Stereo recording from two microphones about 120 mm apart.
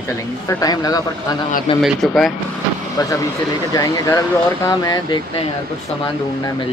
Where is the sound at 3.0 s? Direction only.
35° left (ahead or behind).